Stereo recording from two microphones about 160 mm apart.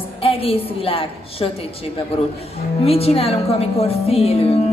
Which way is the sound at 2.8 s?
40° left (ahead or behind).